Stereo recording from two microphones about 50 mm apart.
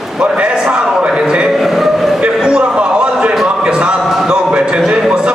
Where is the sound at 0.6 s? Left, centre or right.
Centre.